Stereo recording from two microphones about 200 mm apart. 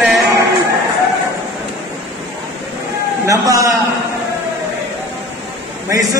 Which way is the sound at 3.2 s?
15° right (ahead or behind).